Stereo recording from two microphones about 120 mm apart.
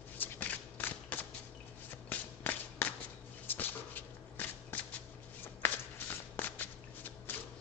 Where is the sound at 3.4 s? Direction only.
15° left (ahead or behind).